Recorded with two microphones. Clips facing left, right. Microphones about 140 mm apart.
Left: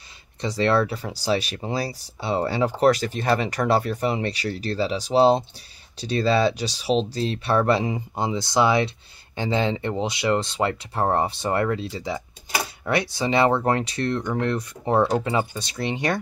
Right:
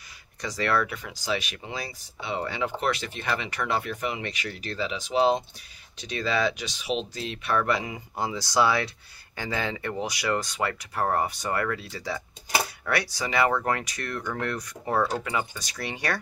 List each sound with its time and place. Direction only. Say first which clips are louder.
0.4 s speech: left 6 dB; 25° left (ahead or behind)